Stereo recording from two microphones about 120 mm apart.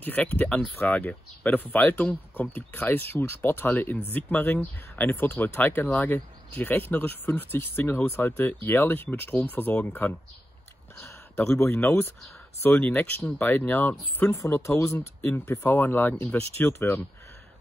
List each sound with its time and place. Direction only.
0.0 s speech: 10° left (ahead or behind)
11.4 s speech: 20° left (ahead or behind)